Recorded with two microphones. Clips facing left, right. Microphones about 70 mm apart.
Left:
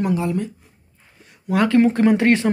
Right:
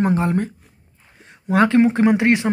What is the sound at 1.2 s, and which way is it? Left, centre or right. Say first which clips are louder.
Speech: right 3 dB; right.